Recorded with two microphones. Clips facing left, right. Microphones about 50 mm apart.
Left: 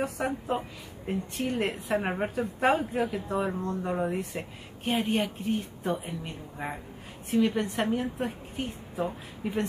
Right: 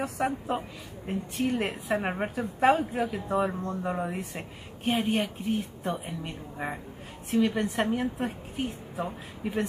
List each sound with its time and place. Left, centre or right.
0.2 s a woman's voice: centre